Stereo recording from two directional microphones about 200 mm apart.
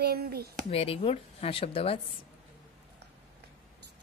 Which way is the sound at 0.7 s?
30° left (ahead or behind).